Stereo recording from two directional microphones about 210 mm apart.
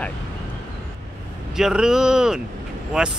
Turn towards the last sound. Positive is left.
turn(degrees=0)  # may be behind; listen again after turning